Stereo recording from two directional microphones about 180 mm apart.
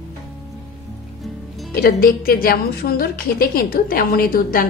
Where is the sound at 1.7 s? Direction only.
55° left (ahead or behind).